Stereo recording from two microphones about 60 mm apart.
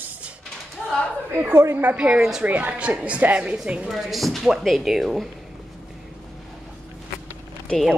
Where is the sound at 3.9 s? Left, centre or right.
Centre.